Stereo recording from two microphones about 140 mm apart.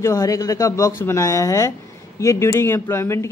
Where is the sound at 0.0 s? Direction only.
20° left (ahead or behind).